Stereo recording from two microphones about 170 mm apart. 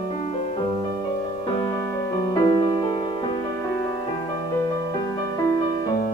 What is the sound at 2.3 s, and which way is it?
Music, 20° left (ahead or behind).